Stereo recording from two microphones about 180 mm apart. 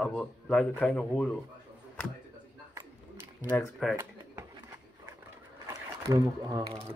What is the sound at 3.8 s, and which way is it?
Speech, centre (ahead or behind).